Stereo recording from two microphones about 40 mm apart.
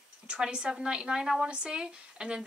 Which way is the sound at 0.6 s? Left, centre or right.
Centre.